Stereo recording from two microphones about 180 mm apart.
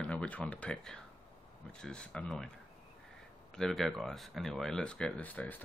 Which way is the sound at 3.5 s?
Centre (ahead or behind).